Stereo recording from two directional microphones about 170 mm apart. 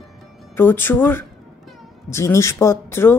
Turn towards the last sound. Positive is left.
turn(degrees=15)  # may be behind; listen again after turning